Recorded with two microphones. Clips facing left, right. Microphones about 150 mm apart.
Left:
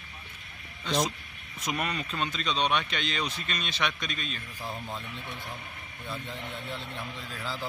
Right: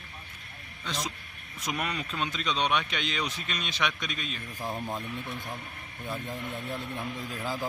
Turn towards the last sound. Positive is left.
turn(degrees=-20)  # may be behind; listen again after turning